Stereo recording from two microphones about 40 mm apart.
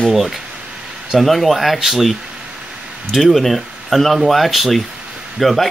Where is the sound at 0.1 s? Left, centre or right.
Centre.